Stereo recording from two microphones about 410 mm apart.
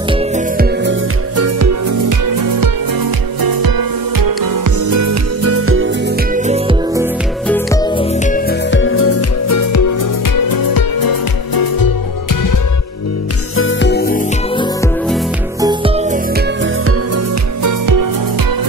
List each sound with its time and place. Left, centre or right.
0.1 s music: centre
0.8 s music: right; by 7.1 s centre
7.4 s music: centre; by 11.9 s left
13.6 s music: left
15.6 s music: centre; by 17.2 s right
17.6 s music: right